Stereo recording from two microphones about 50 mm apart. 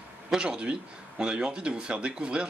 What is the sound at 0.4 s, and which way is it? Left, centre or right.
Speech, right.